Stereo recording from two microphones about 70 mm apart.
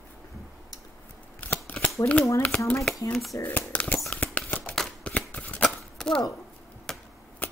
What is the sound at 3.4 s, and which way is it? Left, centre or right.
Speech, left.